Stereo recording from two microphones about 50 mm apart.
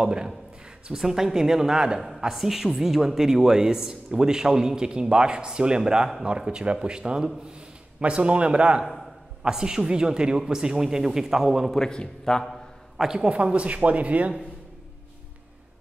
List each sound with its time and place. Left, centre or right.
0.0 s a man's voice: centre
11.7 s a man's voice: centre
12.9 s a woman's voice: centre
13.3 s speech: right